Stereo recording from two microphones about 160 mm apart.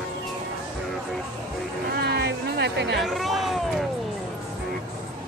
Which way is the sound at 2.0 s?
90° right.